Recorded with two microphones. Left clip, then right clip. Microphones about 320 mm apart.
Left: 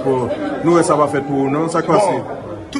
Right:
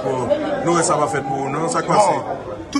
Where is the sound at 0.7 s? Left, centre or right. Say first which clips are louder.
Left 5 dB; centre.